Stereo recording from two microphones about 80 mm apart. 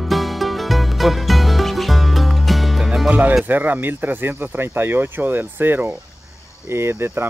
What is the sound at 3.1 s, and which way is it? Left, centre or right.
Speech, centre.